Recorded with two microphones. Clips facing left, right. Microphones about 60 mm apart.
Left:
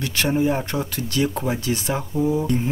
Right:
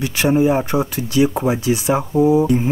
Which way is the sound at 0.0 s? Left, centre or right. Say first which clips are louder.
Right 5 dB; centre.